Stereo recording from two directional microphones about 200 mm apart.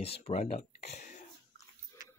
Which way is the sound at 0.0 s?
30° left (ahead or behind).